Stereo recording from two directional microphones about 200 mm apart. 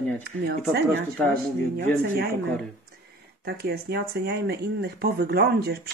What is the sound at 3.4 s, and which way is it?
Speech, 55° right (ahead or behind).